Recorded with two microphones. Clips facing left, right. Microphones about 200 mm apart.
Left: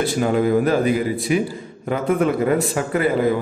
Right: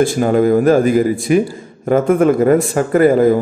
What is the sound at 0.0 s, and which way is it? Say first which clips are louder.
A man's voice: right 6 dB; 45° right (ahead or behind).